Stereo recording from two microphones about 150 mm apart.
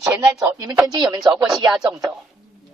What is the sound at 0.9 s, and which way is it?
Speech, 30° right (ahead or behind).